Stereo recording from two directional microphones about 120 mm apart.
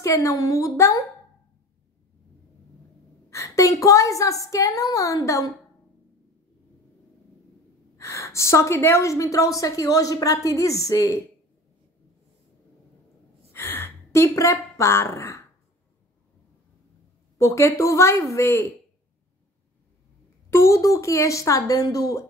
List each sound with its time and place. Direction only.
0.0 s a woman's voice: 25° left (ahead or behind)
3.3 s a sound: 25° left (ahead or behind)
3.8 s a woman's voice: 25° left (ahead or behind)
8.0 s a woman's voice: 25° left (ahead or behind)
13.5 s a sound: 20° left (ahead or behind)
17.4 s a woman's voice: 25° left (ahead or behind)
20.4 s a woman's voice: 25° left (ahead or behind)